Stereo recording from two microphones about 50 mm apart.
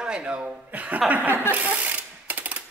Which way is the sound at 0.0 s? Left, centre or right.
Right.